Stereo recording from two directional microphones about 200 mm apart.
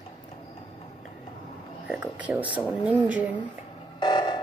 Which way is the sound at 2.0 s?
10° right (ahead or behind).